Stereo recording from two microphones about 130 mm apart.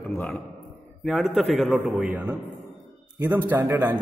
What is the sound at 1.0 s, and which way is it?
A man's voice, centre (ahead or behind).